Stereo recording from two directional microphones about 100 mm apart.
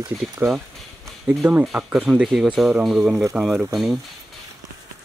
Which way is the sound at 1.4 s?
20° right (ahead or behind).